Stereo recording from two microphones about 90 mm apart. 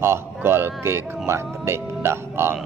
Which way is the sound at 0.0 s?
25° right (ahead or behind).